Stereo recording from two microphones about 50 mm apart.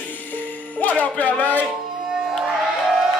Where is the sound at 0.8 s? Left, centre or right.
Left.